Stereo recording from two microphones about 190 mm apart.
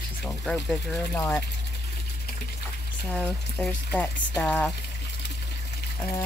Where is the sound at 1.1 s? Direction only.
15° left (ahead or behind).